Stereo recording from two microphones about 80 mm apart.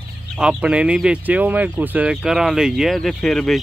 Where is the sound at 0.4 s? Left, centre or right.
Centre.